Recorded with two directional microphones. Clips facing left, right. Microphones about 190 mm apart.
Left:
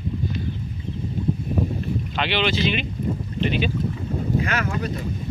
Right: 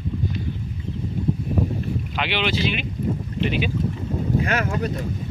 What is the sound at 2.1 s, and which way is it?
Speech, 10° right (ahead or behind).